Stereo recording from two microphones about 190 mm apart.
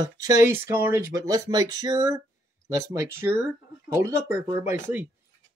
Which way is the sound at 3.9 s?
15° right (ahead or behind).